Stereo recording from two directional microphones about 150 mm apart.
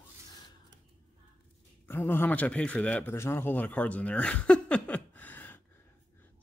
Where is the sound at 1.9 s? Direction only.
15° left (ahead or behind).